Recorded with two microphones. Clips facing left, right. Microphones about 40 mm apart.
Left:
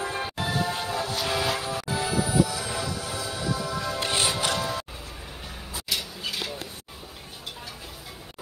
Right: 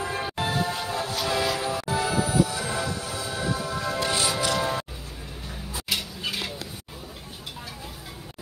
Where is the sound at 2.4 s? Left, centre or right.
Centre.